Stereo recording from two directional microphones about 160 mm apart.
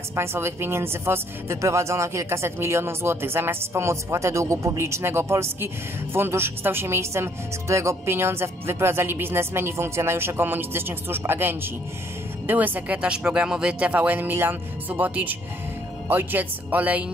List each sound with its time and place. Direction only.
0.1 s speech: 15° right (ahead or behind)